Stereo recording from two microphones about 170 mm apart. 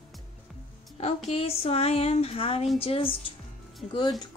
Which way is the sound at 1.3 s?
35° left (ahead or behind).